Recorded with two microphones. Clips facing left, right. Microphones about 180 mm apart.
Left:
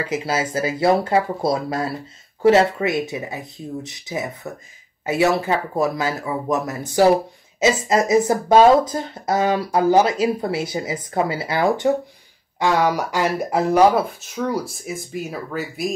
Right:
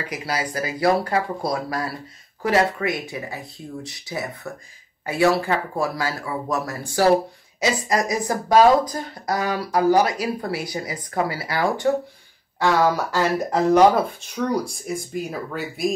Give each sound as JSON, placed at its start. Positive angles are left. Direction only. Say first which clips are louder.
{"t": 0.0, "sound": "speech", "louder": "left 4 dB", "side_deg": 25}